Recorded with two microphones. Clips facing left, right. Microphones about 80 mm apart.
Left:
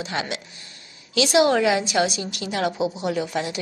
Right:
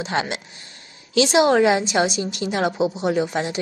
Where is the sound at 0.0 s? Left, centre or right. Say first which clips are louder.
Right 4 dB; right.